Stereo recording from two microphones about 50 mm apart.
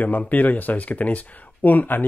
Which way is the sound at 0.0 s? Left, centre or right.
Left.